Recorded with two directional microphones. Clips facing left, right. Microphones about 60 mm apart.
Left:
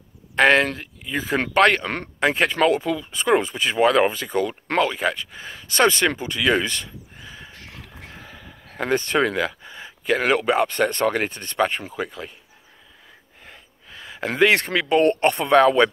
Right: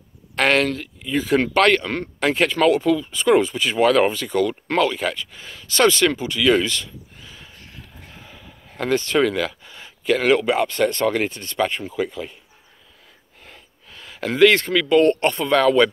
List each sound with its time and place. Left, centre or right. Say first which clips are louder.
0.4 s speech: left 2 dB; left
7.5 s a sound: left 2 dB; left
8.2 s a sound: left 2 dB; left
8.7 s speech: right 1 dB; left
13.4 s gasp: right 1 dB; left
14.5 s speech: right 2 dB; left
15.0 s speech: right 1 dB; left